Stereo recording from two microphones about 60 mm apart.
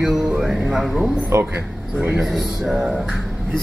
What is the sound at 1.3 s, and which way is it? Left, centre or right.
Speech, right.